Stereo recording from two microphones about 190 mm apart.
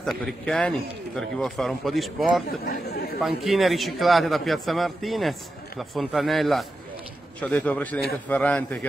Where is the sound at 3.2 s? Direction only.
Centre (ahead or behind).